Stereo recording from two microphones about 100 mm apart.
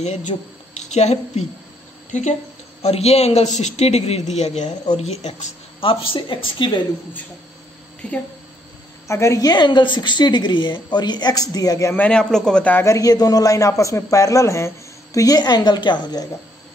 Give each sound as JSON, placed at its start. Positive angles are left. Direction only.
{"t": 0.3, "sound": "a man's voice", "side_deg": 90}
{"t": 2.8, "sound": "a man's voice", "side_deg": 90}
{"t": 5.8, "sound": "speech", "side_deg": 65}
{"t": 9.0, "sound": "a woman's voice", "side_deg": 30}
{"t": 11.9, "sound": "a man's voice", "side_deg": 10}
{"t": 12.8, "sound": "a woman's voice", "side_deg": 35}